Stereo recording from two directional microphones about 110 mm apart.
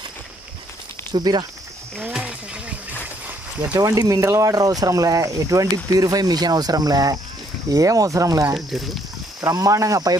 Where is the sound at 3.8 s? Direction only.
35° right (ahead or behind).